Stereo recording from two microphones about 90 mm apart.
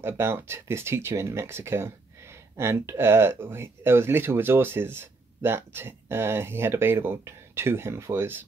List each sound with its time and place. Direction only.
0.0 s speech: 25° right (ahead or behind)